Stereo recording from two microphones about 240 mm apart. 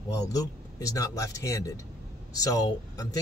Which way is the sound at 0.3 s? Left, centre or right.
Centre.